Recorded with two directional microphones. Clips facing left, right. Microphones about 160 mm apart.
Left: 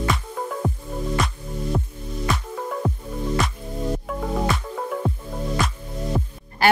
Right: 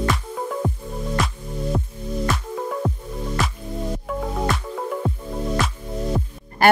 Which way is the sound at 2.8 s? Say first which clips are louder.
Left 1 dB; centre (ahead or behind).